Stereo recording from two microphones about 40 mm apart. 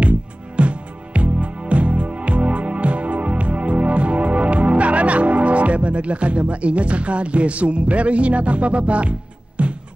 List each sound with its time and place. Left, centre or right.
0.0 s music: right